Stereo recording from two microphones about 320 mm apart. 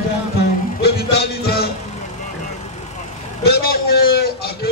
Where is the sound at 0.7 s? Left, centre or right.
Left.